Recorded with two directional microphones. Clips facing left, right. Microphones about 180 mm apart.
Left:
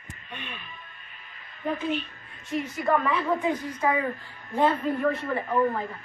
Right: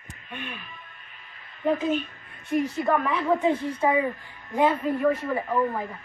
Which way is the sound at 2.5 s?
50° right (ahead or behind).